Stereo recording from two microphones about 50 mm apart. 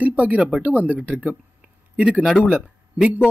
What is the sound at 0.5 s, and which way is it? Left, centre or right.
Speech, right.